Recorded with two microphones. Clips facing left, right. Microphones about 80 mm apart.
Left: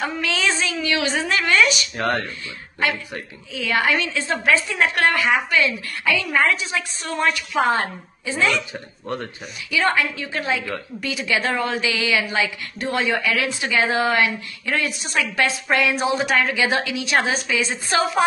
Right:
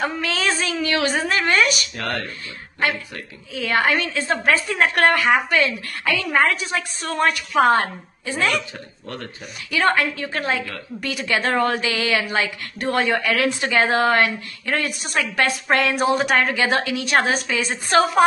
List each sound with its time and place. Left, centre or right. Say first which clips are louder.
0.0 s a woman's voice: even; right
2.0 s speech: left 4 dB; left
3.5 s a woman's voice: right 1 dB; right
9.7 s a woman's voice: right 1 dB; right